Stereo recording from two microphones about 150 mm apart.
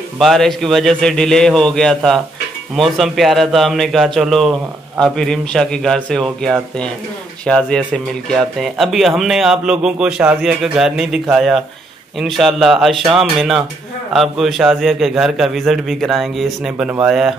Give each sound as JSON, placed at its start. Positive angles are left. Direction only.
{"t": 0.2, "sound": "a man's voice", "side_deg": 0}
{"t": 16.7, "sound": "speech", "side_deg": -10}